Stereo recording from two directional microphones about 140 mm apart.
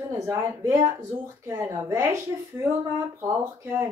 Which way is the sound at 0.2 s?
20° right (ahead or behind).